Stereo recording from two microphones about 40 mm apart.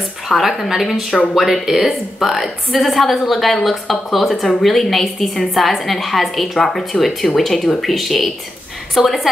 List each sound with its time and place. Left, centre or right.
0.3 s a woman's voice: centre